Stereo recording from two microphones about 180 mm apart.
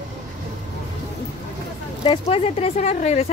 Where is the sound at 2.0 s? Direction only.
30° left (ahead or behind).